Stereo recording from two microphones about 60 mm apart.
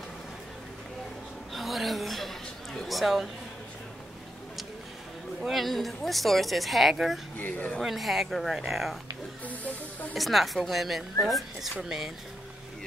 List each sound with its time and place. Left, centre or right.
1.5 s a sound: centre
5.4 s a woman's voice: centre
7.3 s speech: left
7.8 s a woman's voice: centre
9.5 s snake: left
10.1 s a woman's voice: centre